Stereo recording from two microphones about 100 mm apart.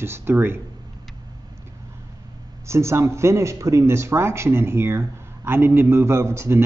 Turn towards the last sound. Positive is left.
turn(degrees=-25)  # may be behind; listen again after turning